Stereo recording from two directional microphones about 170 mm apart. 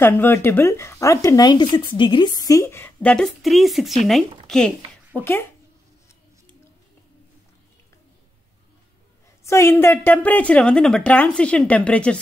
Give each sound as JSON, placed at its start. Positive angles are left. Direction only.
{"t": 0.0, "sound": "speech", "side_deg": 15}
{"t": 9.4, "sound": "speech", "side_deg": 15}